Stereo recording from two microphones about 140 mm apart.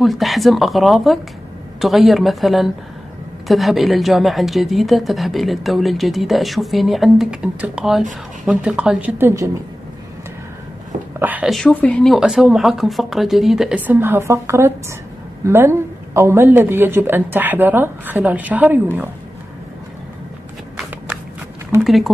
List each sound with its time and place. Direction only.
0.0 s a woman's voice: centre (ahead or behind)
9.2 s a woman's voice: 25° right (ahead or behind)
11.1 s speech: 10° right (ahead or behind)
11.5 s a woman's voice: 10° left (ahead or behind); by 18.8 s 10° right (ahead or behind)
21.8 s speech: centre (ahead or behind)